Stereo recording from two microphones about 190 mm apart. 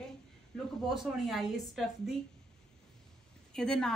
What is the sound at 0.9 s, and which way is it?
Speech, centre (ahead or behind).